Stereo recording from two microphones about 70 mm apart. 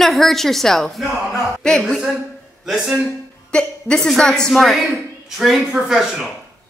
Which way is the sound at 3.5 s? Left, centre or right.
Centre.